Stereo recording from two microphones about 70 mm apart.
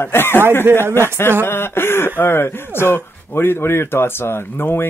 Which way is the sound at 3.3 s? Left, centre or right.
Left.